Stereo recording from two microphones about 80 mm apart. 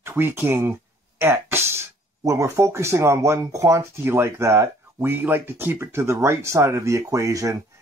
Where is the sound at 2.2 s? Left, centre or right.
Right.